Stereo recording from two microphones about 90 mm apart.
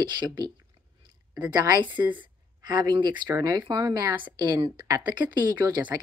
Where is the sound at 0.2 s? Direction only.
55° right (ahead or behind).